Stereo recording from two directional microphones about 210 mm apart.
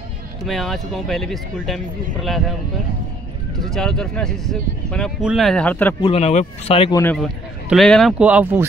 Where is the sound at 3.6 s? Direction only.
5° left (ahead or behind).